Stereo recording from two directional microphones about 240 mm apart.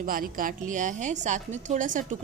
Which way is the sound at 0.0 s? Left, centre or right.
Right.